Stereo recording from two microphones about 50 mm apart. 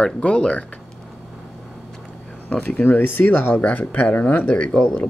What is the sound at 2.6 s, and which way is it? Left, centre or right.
Speech, left.